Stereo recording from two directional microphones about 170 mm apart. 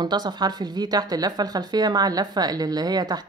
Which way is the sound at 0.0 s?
25° right (ahead or behind).